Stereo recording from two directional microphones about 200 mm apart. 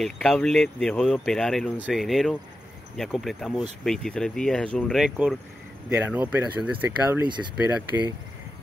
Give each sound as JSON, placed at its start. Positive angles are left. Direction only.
{"t": 0.0, "sound": "speech", "side_deg": 0}